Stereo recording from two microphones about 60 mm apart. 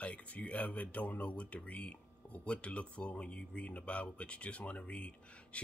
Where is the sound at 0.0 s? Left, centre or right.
Left.